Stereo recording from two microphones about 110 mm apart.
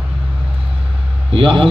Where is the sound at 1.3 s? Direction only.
55° right (ahead or behind).